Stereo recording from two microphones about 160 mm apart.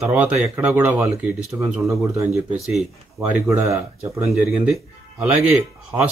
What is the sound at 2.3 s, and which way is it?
Speech, centre (ahead or behind).